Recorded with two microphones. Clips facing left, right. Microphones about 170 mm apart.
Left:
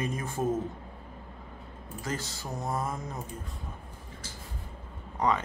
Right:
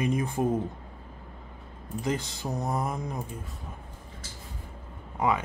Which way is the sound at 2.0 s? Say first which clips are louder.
Right 5 dB; 15° right (ahead or behind).